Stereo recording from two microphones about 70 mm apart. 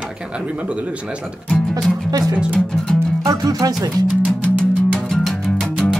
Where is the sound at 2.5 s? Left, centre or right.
Centre.